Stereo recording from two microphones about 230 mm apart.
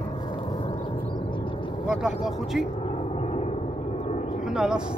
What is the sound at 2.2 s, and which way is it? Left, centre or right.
Speech, centre.